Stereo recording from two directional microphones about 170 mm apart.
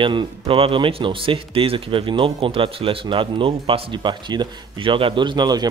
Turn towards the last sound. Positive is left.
turn(degrees=-25)  # may be behind; listen again after turning